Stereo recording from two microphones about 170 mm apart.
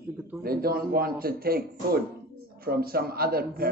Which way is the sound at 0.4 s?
60° right (ahead or behind).